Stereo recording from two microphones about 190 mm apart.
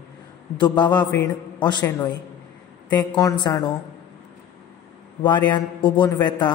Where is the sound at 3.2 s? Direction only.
20° left (ahead or behind).